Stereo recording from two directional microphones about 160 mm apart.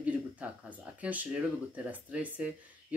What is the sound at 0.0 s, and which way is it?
Speech, 10° right (ahead or behind).